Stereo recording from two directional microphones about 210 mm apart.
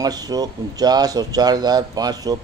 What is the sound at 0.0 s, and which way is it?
Speech, 20° right (ahead or behind).